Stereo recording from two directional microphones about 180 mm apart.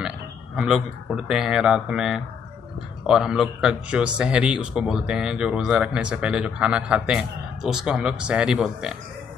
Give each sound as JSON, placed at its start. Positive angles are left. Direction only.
{"t": 0.6, "sound": "a man's voice", "side_deg": -5}